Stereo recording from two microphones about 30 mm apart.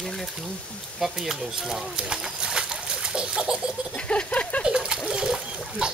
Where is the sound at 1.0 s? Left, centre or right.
Centre.